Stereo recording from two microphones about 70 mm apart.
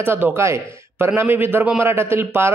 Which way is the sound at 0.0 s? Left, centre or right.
Right.